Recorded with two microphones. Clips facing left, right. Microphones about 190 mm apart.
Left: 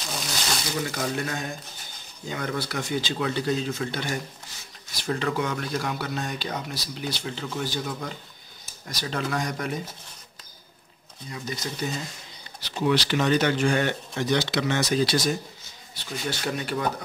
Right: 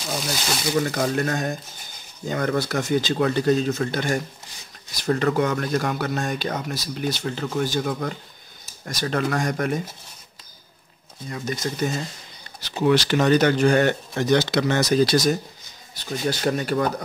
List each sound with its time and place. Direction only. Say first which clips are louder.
0.9 s speech: right 6 dB; 45° right (ahead or behind)
11.2 s speech: right 5 dB; 50° right (ahead or behind)